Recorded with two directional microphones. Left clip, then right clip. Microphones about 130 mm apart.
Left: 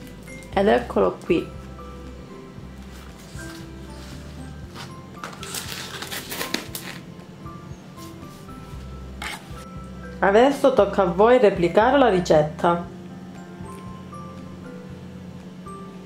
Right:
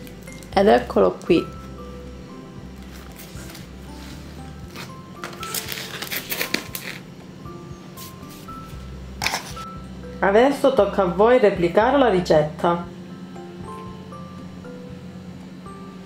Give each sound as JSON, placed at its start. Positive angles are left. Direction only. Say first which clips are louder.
{"t": 0.6, "sound": "speech", "louder": "right 3 dB", "side_deg": -20}
{"t": 5.5, "sound": "a sound", "louder": "right 2 dB", "side_deg": 0}
{"t": 10.2, "sound": "a woman's voice", "louder": "even", "side_deg": 5}